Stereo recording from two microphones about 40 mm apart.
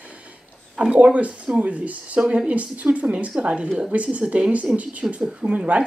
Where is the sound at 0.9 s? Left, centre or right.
Right.